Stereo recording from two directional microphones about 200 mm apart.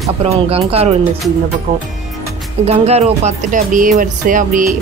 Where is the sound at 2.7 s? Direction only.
30° right (ahead or behind).